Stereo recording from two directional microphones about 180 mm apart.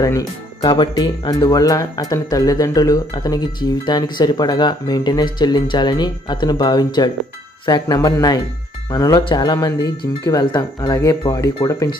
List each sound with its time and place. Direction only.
0.0 s speech: 20° left (ahead or behind)